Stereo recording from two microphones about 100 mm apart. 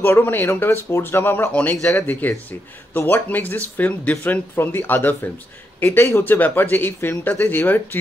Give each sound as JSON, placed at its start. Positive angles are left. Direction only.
{"t": 0.0, "sound": "speech", "side_deg": 20}